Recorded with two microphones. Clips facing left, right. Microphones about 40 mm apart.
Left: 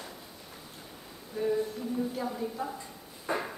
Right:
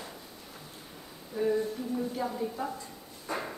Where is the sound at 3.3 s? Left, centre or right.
Left.